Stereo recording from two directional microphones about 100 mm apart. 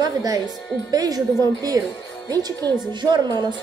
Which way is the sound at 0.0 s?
40° right (ahead or behind).